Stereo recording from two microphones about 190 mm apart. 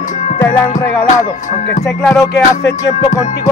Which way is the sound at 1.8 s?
Centre (ahead or behind).